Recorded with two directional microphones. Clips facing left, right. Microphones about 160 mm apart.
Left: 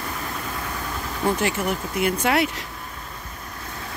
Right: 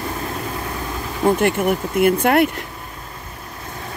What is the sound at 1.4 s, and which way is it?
Speech, 55° right (ahead or behind).